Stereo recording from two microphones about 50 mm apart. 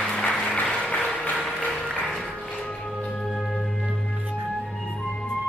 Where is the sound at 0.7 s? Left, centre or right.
Centre.